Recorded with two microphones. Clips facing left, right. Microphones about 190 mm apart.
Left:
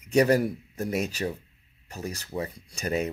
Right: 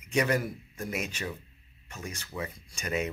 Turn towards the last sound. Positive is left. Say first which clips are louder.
# left 4 dB
turn(degrees=35)  # may be behind; listen again after turning